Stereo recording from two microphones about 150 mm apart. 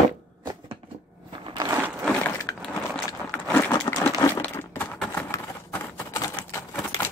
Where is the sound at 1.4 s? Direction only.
30° right (ahead or behind).